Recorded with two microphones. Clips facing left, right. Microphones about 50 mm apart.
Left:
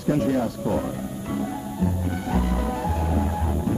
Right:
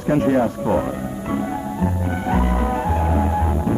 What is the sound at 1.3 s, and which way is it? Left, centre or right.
Music, right.